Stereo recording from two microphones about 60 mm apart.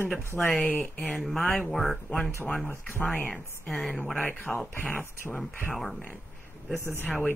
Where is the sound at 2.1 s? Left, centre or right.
Left.